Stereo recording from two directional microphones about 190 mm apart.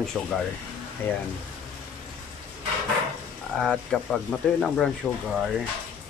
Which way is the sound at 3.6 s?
Centre (ahead or behind).